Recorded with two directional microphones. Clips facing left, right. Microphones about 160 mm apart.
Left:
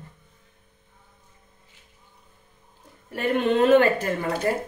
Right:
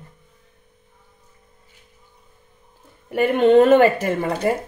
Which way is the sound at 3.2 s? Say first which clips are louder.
Right 7 dB; 70° right (ahead or behind).